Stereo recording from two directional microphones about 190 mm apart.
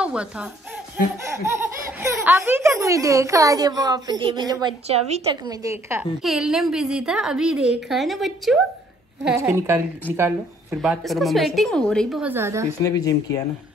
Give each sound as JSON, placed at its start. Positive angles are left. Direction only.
{"t": 0.0, "sound": "speech", "side_deg": -5}
{"t": 4.8, "sound": "a woman's voice", "side_deg": -35}
{"t": 5.4, "sound": "speech", "side_deg": -20}
{"t": 6.2, "sound": "a woman's voice", "side_deg": 0}
{"t": 9.4, "sound": "speech", "side_deg": -15}
{"t": 10.8, "sound": "a woman's voice", "side_deg": 0}
{"t": 12.8, "sound": "speech", "side_deg": 20}